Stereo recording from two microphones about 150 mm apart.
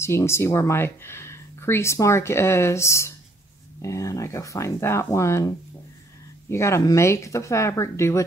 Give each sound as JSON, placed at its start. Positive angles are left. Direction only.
{"t": 0.0, "sound": "speech", "side_deg": 20}
{"t": 6.5, "sound": "speech", "side_deg": 20}